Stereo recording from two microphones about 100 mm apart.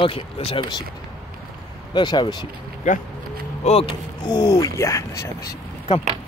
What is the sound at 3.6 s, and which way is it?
Speech, 85° left.